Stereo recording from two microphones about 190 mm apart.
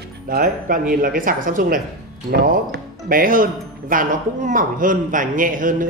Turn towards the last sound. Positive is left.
turn(degrees=-45)  # may be behind; listen again after turning